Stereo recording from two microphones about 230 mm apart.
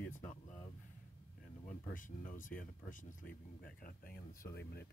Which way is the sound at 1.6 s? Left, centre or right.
Left.